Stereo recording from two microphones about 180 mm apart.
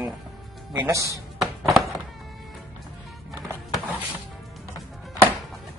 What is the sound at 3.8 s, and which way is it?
Music, 10° right (ahead or behind).